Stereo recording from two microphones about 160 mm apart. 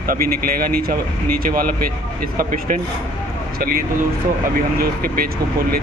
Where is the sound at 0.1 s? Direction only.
65° right (ahead or behind).